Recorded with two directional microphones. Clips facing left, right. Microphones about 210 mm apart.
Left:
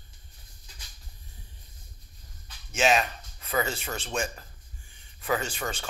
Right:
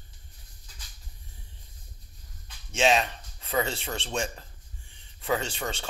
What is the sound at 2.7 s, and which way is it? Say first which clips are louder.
Speech: right 1 dB; 25° right (ahead or behind).